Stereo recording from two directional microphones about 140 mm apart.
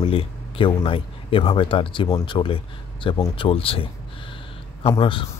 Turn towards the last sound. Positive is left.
turn(degrees=35)  # may be behind; listen again after turning